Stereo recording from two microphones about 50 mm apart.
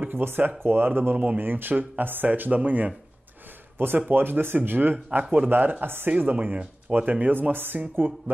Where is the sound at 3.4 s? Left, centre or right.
Right.